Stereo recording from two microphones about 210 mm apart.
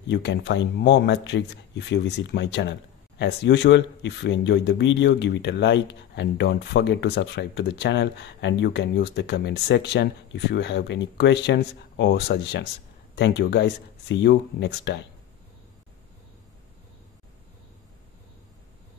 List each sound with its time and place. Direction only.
0.1 s speech: 55° left (ahead or behind)